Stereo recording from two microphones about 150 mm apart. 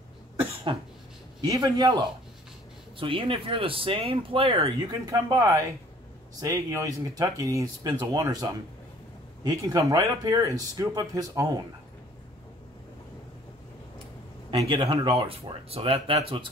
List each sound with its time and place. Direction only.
0.7 s speech: 35° right (ahead or behind)
3.0 s speech: 35° right (ahead or behind)
4.6 s speech: 25° right (ahead or behind)
14.5 s speech: 40° right (ahead or behind)